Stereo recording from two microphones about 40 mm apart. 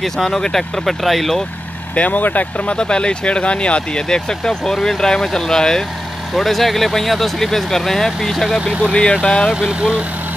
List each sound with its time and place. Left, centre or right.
0.0 s speech: centre
2.0 s speech: left
2.8 s speech: left
4.1 s speech: centre
6.3 s speech: centre
8.9 s speech: left
9.6 s speech: right